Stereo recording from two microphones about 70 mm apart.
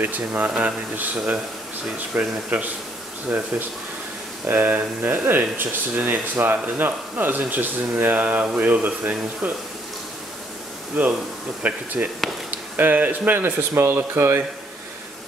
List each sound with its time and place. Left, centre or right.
0.0 s speech: right
11.0 s speech: right